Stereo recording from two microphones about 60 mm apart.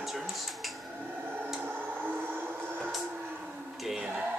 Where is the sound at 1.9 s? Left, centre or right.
Right.